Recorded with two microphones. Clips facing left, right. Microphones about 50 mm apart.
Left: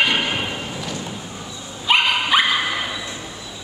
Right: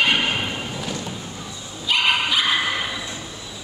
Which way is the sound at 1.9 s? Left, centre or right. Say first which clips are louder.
Left 3 dB; left.